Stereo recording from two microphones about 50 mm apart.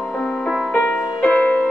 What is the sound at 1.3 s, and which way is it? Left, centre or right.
Music, centre.